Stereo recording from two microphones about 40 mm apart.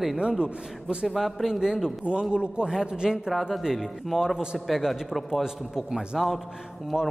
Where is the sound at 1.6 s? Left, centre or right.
Centre.